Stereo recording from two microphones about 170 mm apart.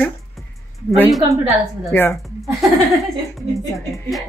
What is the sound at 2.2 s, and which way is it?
Speech, centre (ahead or behind).